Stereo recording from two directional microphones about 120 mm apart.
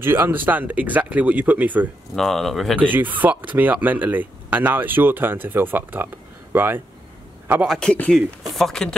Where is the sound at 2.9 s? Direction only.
15° right (ahead or behind).